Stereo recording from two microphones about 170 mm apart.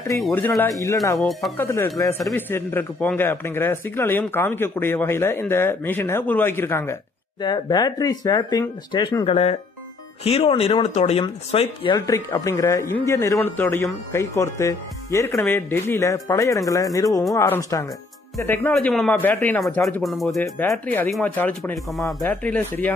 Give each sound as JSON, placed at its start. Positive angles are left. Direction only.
{"t": 1.1, "sound": "speech", "side_deg": 0}
{"t": 1.6, "sound": "a man's voice", "side_deg": 15}
{"t": 7.4, "sound": "speech", "side_deg": 25}
{"t": 12.1, "sound": "a man's voice", "side_deg": 20}